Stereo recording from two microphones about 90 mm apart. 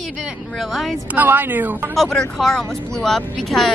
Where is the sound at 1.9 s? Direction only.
5° left (ahead or behind).